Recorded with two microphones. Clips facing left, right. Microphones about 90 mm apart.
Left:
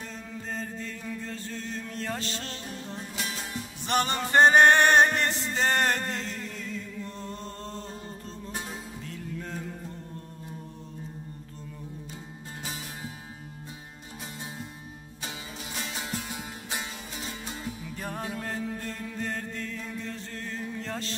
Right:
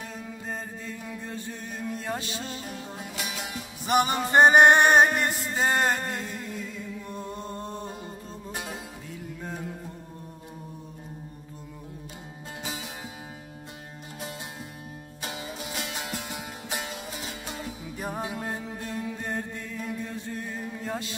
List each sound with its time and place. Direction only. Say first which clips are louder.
0.0 s music: right 1 dB; 10° right (ahead or behind)
12.6 s music: right 2 dB; 15° right (ahead or behind)
15.8 s music: left 3 dB; 5° right (ahead or behind)
17.8 s music: right 4 dB; 15° right (ahead or behind)